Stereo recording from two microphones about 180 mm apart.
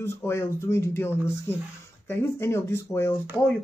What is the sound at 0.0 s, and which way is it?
Speech, 15° left (ahead or behind).